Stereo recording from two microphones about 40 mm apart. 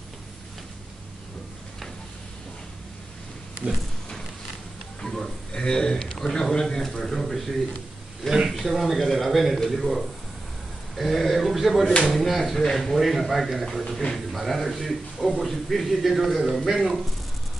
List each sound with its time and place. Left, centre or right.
5.0 s a sound: centre
5.6 s speech: centre
8.2 s speech: centre
8.5 s a man's voice: centre